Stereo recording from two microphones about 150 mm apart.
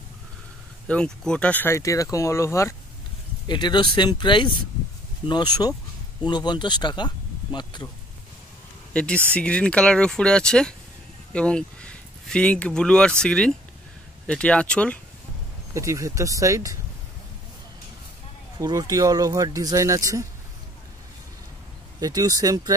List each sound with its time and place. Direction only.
0.8 s speech: 5° left (ahead or behind)
3.4 s speech: 30° left (ahead or behind)
8.9 s speech: 5° left (ahead or behind)
15.7 s speech: 20° right (ahead or behind)
18.6 s speech: 25° right (ahead or behind)
22.0 s speech: 25° right (ahead or behind)